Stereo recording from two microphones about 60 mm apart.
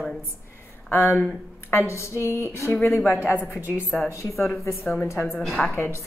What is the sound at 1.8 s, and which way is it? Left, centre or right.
Speech, left.